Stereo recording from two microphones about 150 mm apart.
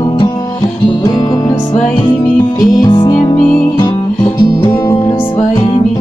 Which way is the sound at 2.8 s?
30° left (ahead or behind).